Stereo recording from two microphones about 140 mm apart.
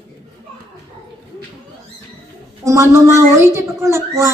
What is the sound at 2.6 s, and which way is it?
A woman's voice, 20° right (ahead or behind).